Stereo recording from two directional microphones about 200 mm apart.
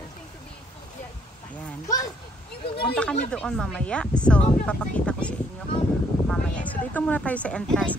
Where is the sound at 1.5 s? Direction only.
15° left (ahead or behind).